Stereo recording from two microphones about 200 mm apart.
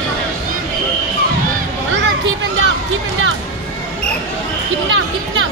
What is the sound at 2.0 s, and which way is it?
Children playing, 65° right (ahead or behind).